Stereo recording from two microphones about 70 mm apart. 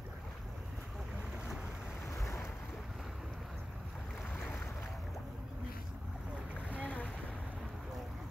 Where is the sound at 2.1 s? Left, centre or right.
Left.